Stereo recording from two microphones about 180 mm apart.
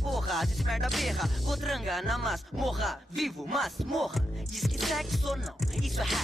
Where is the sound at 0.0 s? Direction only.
Centre (ahead or behind).